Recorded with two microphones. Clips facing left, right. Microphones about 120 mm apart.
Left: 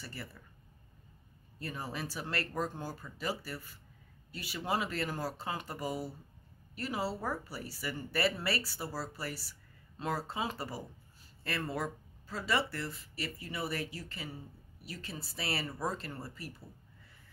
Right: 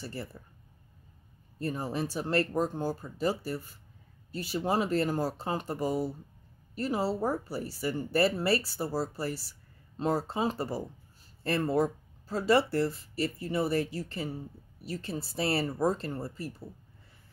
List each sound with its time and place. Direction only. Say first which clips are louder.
0.0 s speech: right 7 dB; 30° right (ahead or behind)
1.6 s speech: right 8 dB; 30° right (ahead or behind)